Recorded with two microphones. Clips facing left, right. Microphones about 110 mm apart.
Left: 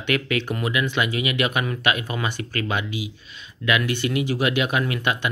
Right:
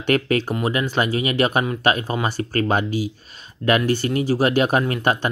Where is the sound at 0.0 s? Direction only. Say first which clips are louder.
Right 5 dB; 40° right (ahead or behind).